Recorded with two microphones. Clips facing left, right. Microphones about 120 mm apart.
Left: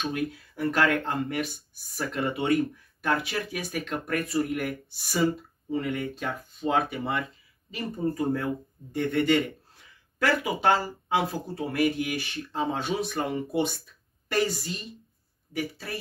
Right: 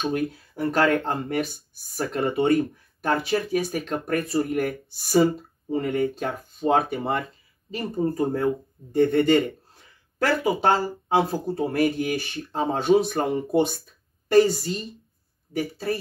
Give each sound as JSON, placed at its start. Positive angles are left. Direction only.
{"t": 0.1, "sound": "speech", "side_deg": -35}